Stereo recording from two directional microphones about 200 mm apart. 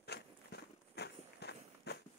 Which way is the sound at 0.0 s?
55° left (ahead or behind).